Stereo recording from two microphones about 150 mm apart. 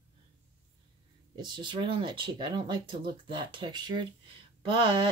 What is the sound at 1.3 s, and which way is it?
Speech, 30° right (ahead or behind).